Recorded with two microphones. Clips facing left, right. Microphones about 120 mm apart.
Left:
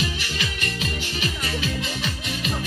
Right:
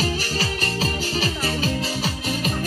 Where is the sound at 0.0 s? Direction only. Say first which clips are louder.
Right 4 dB; 35° right (ahead or behind).